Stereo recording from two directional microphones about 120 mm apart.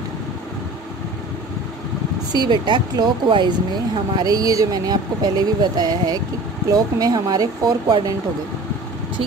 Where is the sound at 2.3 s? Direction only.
40° right (ahead or behind).